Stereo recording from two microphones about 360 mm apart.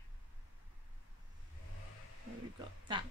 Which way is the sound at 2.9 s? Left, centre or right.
Centre.